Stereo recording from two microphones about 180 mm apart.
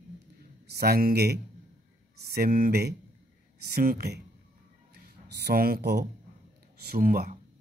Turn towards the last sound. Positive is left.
turn(degrees=-50)  # may be behind; listen again after turning